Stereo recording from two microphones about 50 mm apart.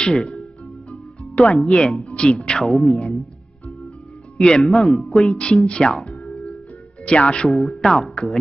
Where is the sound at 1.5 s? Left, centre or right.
Centre.